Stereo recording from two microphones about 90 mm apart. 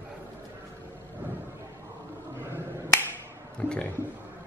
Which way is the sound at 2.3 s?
30° right (ahead or behind).